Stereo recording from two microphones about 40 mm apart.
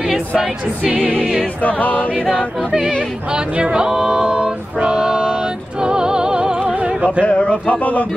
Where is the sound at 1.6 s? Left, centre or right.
Left.